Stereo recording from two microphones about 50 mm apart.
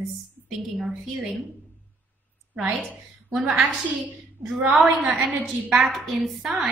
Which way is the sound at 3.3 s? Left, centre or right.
Centre.